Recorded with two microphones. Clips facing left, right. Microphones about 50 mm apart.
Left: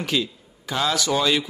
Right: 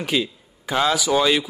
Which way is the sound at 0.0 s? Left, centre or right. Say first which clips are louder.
Right 2 dB; centre.